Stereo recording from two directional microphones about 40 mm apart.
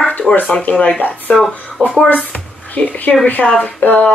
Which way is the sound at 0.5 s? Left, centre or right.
Left.